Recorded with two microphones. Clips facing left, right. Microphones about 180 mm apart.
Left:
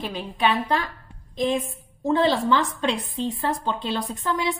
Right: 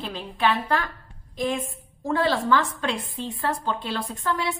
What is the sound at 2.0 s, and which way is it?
A woman's voice, 20° left (ahead or behind).